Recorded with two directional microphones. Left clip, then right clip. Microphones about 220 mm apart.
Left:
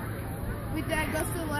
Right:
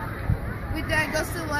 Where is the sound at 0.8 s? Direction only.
10° right (ahead or behind).